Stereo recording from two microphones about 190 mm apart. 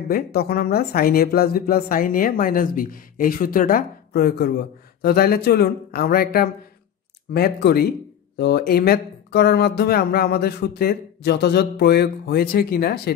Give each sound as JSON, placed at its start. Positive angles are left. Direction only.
{"t": 0.1, "sound": "speech", "side_deg": 55}